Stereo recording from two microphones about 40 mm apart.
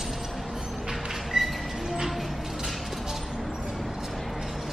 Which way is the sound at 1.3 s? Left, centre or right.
Centre.